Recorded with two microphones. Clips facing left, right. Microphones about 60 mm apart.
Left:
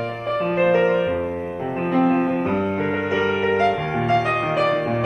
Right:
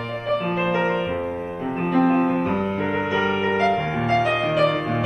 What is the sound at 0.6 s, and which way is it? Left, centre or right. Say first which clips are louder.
Music: left 9 dB; left.